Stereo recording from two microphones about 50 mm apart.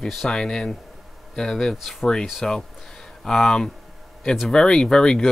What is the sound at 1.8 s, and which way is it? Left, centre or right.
Speech, centre.